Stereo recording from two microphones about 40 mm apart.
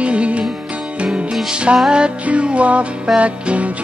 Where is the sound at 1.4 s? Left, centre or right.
Right.